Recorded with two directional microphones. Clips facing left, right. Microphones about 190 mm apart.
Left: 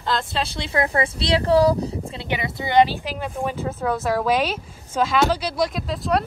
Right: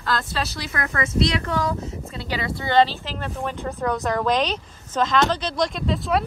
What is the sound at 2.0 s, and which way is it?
Speech, 20° left (ahead or behind).